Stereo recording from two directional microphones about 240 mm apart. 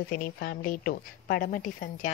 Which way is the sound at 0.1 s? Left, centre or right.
Left.